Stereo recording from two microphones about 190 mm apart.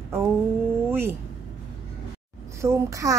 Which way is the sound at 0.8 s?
10° right (ahead or behind).